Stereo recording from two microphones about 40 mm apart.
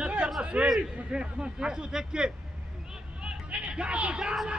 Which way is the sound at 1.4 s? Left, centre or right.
Right.